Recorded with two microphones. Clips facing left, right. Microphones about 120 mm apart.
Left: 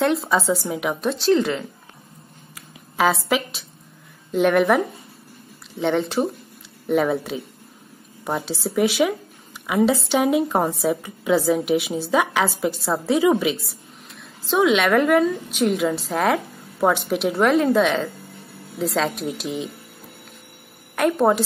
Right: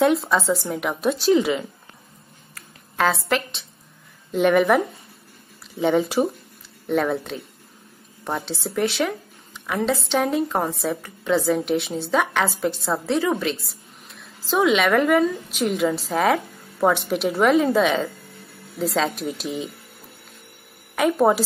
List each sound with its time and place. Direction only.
0.0 s a woman's voice: centre (ahead or behind)
2.5 s a sound: 5° left (ahead or behind)
4.3 s a woman's voice: centre (ahead or behind)
20.9 s a woman's voice: centre (ahead or behind)